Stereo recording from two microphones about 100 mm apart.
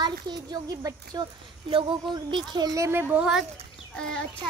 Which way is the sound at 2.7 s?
30° right (ahead or behind).